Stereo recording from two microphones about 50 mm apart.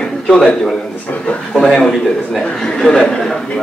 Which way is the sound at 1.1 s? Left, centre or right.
Left.